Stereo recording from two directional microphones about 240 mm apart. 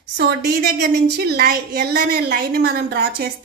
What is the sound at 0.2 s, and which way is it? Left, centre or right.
A woman's voice, right.